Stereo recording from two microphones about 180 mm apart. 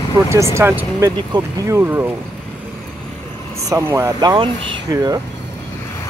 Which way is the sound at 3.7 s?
15° right (ahead or behind).